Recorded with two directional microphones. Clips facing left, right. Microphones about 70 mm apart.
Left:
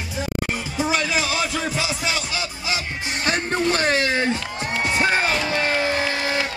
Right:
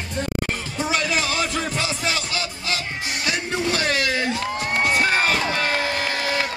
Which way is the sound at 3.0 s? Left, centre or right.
Left.